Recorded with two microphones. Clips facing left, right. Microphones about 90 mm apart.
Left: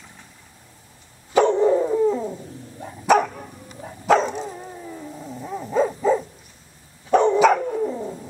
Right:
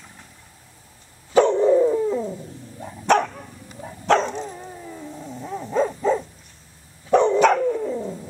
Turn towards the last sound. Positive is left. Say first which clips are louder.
# even
turn(degrees=15)  # may be behind; listen again after turning